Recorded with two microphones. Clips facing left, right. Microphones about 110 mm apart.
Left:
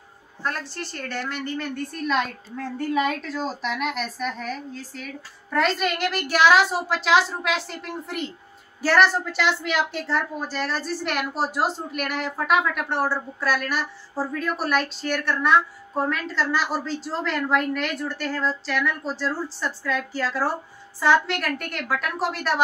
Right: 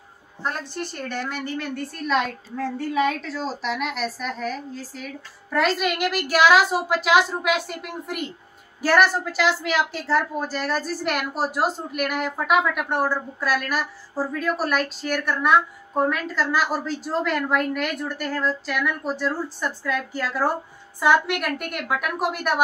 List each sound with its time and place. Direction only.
0.4 s a woman's voice: 15° right (ahead or behind)
11.1 s a woman's voice: 45° right (ahead or behind)
11.9 s a woman's voice: 5° right (ahead or behind)